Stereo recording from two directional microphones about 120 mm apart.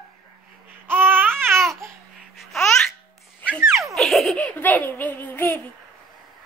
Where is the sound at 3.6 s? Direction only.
25° right (ahead or behind).